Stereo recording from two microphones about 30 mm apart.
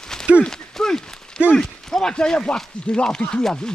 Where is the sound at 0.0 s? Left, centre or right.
Left.